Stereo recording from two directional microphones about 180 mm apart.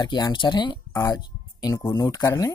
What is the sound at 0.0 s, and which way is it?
Speech, 25° left (ahead or behind).